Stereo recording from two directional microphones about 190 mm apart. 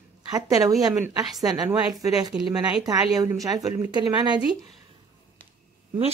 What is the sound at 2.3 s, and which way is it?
Speech, 5° right (ahead or behind).